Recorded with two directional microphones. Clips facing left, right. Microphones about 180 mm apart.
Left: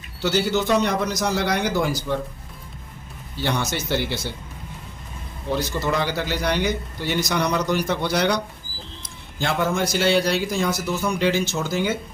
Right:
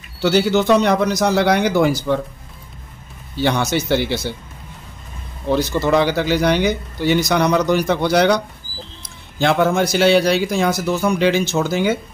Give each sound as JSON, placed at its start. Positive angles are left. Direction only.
{"t": 0.2, "sound": "speech", "side_deg": -70}
{"t": 3.4, "sound": "speech", "side_deg": -70}
{"t": 5.5, "sound": "speech", "side_deg": -70}
{"t": 9.4, "sound": "speech", "side_deg": -70}